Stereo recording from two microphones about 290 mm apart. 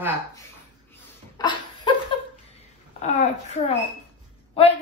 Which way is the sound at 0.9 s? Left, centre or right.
Centre.